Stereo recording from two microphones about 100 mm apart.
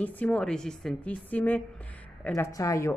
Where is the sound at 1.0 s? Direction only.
15° left (ahead or behind).